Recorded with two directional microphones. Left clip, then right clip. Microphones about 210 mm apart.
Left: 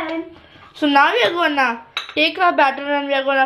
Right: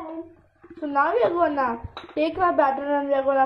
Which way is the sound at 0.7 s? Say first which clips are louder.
Left 7 dB; 45° left (ahead or behind).